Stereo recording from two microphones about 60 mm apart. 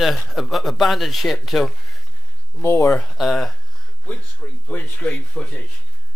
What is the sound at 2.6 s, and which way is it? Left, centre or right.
Speech, left.